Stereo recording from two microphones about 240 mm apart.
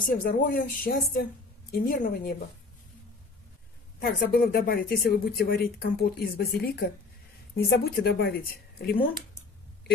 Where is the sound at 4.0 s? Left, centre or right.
Left.